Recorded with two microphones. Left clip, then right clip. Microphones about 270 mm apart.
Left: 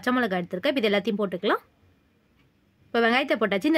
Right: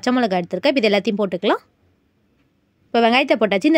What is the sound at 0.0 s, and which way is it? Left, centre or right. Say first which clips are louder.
Speech: right 6 dB; centre.